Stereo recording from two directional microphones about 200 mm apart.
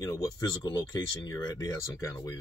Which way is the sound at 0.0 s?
15° left (ahead or behind).